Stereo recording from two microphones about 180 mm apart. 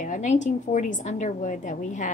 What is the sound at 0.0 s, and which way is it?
A woman's voice, 45° left (ahead or behind).